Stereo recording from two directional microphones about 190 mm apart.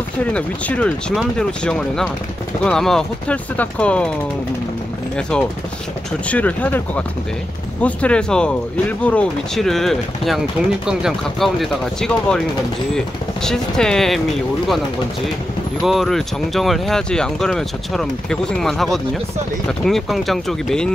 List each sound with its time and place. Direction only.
0.2 s speech: 5° left (ahead or behind)
6.2 s speech: 10° left (ahead or behind)
15.8 s speech: centre (ahead or behind)